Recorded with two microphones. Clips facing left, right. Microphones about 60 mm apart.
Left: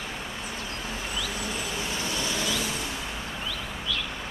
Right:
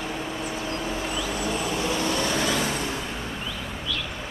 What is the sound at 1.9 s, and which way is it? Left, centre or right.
Vehicle, right.